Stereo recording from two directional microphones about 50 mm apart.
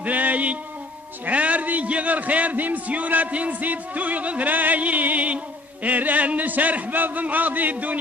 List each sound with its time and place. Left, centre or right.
0.0 s music: right
1.2 s a man's voice: right